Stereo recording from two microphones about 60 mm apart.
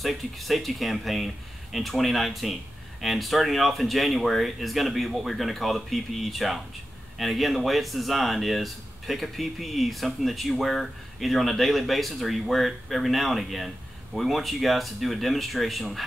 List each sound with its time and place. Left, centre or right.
0.0 s speech: centre